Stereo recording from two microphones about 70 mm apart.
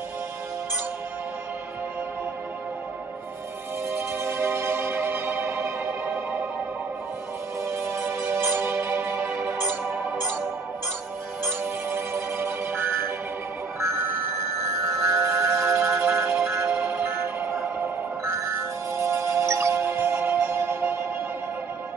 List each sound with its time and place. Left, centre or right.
3.9 s music: right
7.6 s music: right
11.4 s music: right
13.7 s music: right
16.7 s music: right
18.9 s music: right